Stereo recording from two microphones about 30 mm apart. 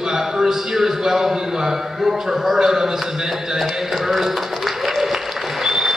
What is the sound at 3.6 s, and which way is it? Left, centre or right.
A man's voice, centre.